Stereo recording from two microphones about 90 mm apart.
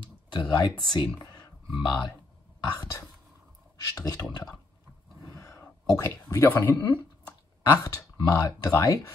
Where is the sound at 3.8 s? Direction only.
45° left (ahead or behind); by 7.0 s 25° left (ahead or behind).